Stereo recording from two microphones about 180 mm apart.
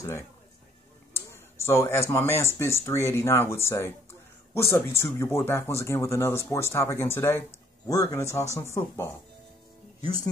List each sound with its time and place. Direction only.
1.1 s speech: 15° left (ahead or behind)